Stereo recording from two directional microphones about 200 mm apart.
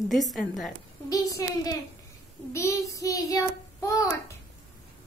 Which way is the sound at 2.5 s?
15° left (ahead or behind).